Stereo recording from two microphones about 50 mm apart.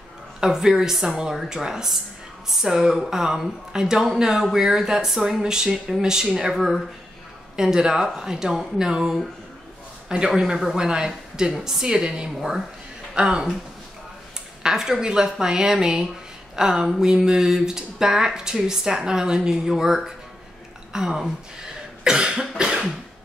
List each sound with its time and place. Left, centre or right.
0.4 s speech: centre
14.6 s speech: centre